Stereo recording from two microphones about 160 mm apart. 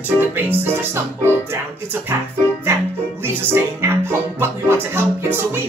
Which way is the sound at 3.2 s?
15° right (ahead or behind).